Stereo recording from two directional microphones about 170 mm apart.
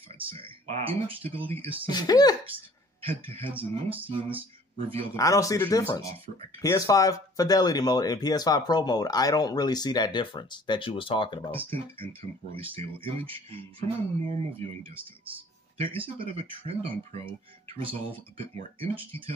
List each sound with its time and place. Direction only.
0.3 s speech: 35° right (ahead or behind)
1.9 s speech: 25° left (ahead or behind)
3.0 s speech: 35° right (ahead or behind)
4.7 s speech: 35° right (ahead or behind)
5.1 s speech: 20° left (ahead or behind)
11.5 s speech: 30° right (ahead or behind)
15.8 s speech: 30° right (ahead or behind)